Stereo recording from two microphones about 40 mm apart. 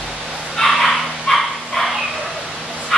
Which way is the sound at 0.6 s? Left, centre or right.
Centre.